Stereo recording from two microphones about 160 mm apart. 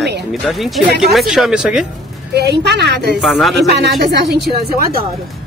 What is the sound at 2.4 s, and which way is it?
Speech, 90° right.